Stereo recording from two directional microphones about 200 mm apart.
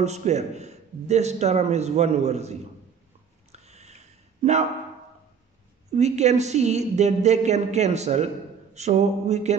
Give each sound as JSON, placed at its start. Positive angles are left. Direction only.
{"t": 0.0, "sound": "a man's voice", "side_deg": -35}
{"t": 3.5, "sound": "a sound", "side_deg": -35}
{"t": 5.9, "sound": "a man's voice", "side_deg": -35}